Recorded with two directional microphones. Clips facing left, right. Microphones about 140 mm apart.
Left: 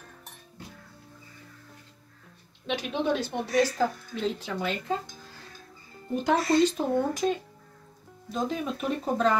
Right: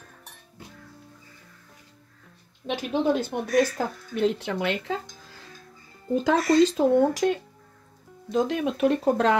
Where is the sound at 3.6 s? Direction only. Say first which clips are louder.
Left 2 dB; 65° right (ahead or behind); by 4.9 s 80° right.